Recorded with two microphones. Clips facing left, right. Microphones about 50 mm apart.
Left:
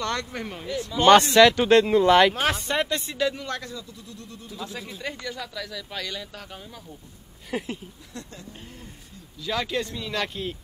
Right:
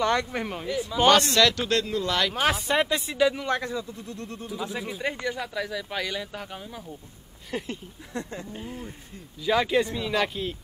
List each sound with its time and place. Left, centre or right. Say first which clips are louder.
0.0 s speech: right 4 dB; centre
1.1 s speech: left 6 dB; left
2.4 s speech: right 1 dB; centre
3.4 s speech: right 6 dB; right
4.5 s speech: right 3 dB; centre
7.5 s speech: left 2 dB; centre
8.1 s speech: right 8 dB; right
8.5 s speech: right 7 dB; centre